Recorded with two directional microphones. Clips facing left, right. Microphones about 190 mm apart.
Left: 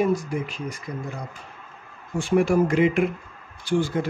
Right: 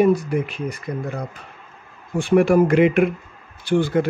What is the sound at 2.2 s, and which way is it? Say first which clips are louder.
Speech: right 5 dB; 60° right (ahead or behind).